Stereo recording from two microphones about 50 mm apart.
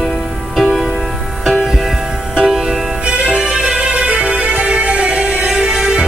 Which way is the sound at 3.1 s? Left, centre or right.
Centre.